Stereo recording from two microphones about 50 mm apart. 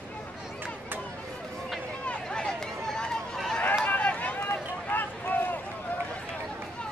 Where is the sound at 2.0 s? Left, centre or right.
Centre.